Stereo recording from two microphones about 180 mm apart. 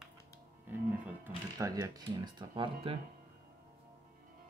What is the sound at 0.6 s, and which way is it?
Music, 10° right (ahead or behind).